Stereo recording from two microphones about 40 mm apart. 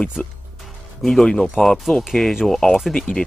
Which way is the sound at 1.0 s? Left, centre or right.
Centre.